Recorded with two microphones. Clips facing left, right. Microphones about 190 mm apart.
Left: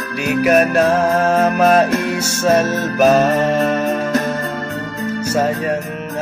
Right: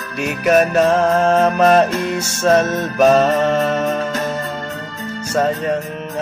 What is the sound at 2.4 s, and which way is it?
Music, 10° left (ahead or behind).